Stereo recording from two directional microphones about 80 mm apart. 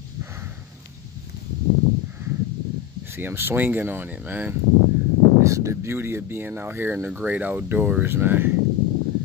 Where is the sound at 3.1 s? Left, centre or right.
Right.